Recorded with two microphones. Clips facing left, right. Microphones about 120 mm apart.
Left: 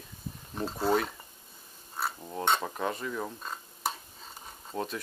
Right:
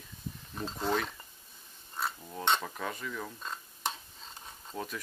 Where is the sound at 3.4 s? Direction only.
5° left (ahead or behind).